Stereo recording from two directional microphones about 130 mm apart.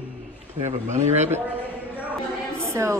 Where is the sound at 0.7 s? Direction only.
65° right (ahead or behind).